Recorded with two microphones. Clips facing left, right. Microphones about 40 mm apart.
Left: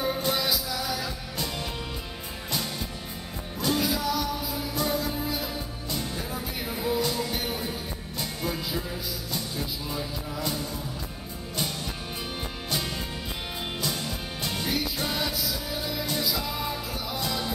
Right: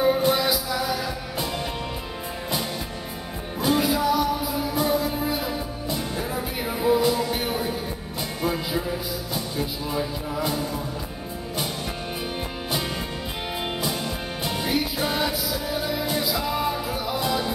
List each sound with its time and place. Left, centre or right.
0.0 s music: centre
3.6 s music: centre
13.7 s music: centre